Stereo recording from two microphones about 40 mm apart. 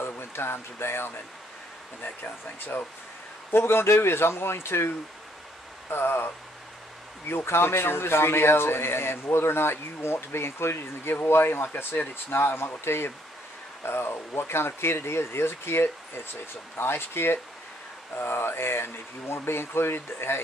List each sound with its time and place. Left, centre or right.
0.0 s speech: left
3.5 s speech: left
5.9 s speech: left
12.3 s speech: left
16.7 s speech: left